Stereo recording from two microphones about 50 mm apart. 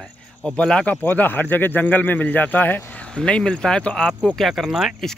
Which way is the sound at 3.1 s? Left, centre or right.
Centre.